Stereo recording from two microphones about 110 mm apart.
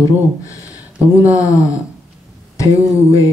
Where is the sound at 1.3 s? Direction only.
30° left (ahead or behind).